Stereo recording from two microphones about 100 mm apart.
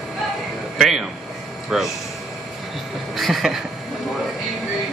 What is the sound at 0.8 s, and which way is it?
A man's voice, centre (ahead or behind).